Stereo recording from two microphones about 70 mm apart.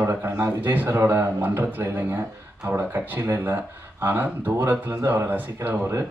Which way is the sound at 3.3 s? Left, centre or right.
Right.